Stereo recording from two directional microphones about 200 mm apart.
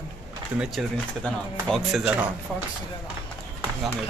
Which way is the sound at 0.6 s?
Centre (ahead or behind).